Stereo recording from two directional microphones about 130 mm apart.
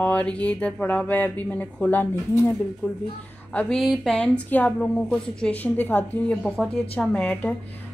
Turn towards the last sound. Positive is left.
turn(degrees=10)  # may be behind; listen again after turning